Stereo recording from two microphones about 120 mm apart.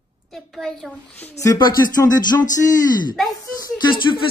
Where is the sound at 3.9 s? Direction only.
40° left (ahead or behind).